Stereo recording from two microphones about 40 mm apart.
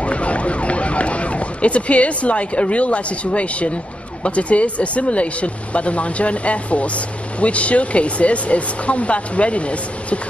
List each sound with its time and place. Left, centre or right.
0.0 s ambulance: left
4.2 s speech: left